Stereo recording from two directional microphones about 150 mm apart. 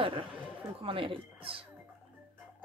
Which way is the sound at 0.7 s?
35° right (ahead or behind).